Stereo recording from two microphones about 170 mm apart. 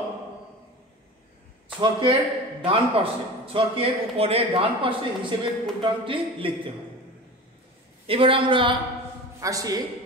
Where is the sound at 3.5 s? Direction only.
35° right (ahead or behind).